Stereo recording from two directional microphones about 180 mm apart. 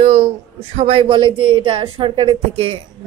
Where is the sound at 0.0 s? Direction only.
35° right (ahead or behind).